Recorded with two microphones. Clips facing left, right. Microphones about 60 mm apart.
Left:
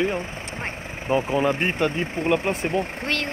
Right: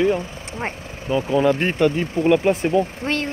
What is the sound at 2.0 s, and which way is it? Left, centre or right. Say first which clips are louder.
Speech: right 5 dB; left.